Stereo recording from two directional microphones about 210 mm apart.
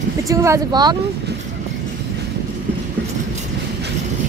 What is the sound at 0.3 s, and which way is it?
Speech, 15° right (ahead or behind).